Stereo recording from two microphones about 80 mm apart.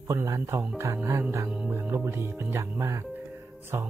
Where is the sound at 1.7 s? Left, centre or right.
Right.